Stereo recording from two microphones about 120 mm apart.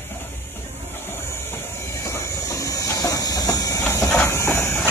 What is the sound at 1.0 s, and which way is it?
Train, 20° left (ahead or behind).